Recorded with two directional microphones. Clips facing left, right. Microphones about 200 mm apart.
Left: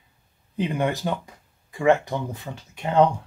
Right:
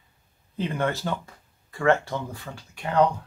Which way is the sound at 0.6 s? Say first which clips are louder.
Left 2 dB; 15° left (ahead or behind).